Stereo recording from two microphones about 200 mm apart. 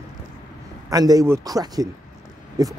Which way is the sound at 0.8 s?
20° right (ahead or behind).